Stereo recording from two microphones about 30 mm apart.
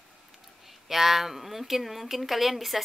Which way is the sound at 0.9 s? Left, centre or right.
Centre.